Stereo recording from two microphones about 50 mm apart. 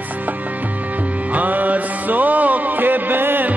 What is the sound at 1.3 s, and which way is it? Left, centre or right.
Music, right.